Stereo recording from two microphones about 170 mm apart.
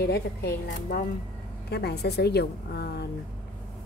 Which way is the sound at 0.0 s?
65° left (ahead or behind).